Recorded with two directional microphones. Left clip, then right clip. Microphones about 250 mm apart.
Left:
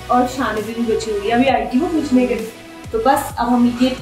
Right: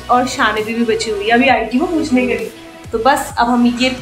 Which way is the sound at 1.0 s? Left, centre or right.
Centre.